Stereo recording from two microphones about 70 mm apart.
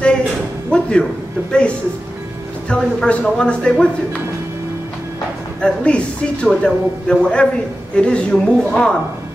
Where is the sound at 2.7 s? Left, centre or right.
Centre.